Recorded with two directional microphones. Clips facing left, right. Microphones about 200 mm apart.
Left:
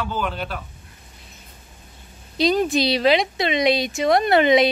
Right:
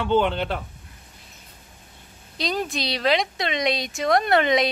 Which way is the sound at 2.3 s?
Centre (ahead or behind).